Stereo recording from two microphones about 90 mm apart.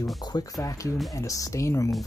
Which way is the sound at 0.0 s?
40° left (ahead or behind).